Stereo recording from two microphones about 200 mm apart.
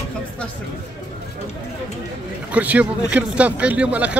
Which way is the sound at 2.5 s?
5° right (ahead or behind).